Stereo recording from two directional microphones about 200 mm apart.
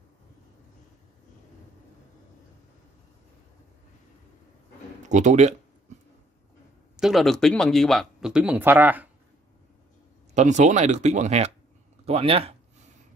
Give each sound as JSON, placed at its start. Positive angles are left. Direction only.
{"t": 5.0, "sound": "speech", "side_deg": -35}
{"t": 7.0, "sound": "speech", "side_deg": 0}
{"t": 10.3, "sound": "speech", "side_deg": -35}